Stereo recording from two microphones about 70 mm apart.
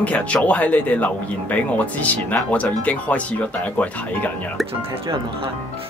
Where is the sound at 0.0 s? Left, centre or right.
Centre.